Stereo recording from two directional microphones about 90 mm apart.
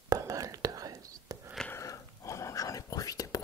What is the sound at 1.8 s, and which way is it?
Whispering, 35° left (ahead or behind).